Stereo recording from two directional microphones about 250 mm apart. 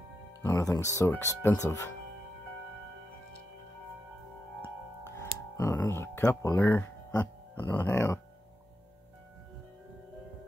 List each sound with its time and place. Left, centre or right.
0.4 s speech: centre
4.6 s music: centre
5.6 s speech: centre